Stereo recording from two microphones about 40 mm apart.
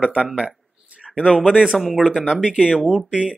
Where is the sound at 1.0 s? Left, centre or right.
Centre.